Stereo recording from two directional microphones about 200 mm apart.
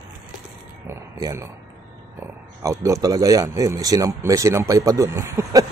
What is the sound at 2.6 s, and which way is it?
Speech, 15° right (ahead or behind).